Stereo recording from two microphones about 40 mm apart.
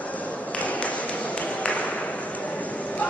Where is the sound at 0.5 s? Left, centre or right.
Left.